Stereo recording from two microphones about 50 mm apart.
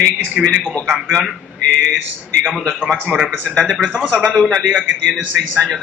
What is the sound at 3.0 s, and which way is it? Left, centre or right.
A man's voice, right.